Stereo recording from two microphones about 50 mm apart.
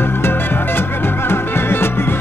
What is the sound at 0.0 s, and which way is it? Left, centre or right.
Music, left.